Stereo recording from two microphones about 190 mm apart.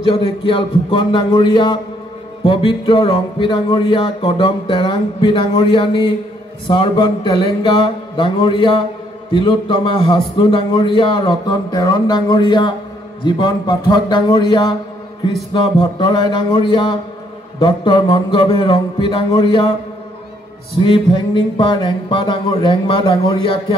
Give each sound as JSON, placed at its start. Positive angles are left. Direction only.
{"t": 0.5, "sound": "speech", "side_deg": 30}
{"t": 20.8, "sound": "speech", "side_deg": 25}